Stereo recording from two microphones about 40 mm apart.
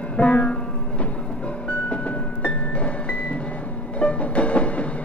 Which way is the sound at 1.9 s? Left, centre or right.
Left.